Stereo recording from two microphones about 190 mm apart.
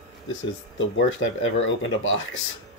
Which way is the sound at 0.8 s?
90° left.